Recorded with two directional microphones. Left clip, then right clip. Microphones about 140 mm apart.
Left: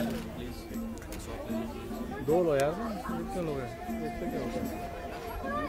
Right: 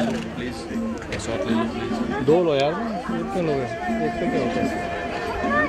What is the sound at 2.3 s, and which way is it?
Speech, 5° right (ahead or behind).